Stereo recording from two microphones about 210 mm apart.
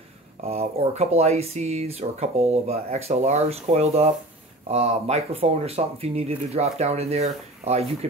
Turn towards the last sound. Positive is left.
turn(degrees=-30)  # may be behind; listen again after turning